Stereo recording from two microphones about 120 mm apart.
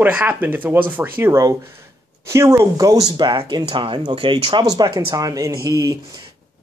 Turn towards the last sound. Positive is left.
turn(degrees=-30)  # may be behind; listen again after turning